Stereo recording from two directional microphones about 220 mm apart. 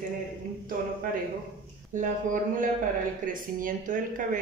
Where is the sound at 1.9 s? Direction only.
35° right (ahead or behind).